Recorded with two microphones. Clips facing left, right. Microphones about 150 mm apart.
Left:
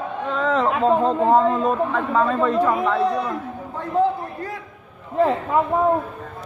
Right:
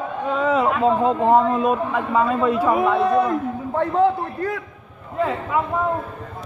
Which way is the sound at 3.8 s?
65° right (ahead or behind).